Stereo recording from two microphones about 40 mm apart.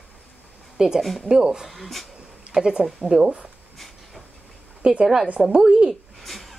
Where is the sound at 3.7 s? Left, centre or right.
Centre.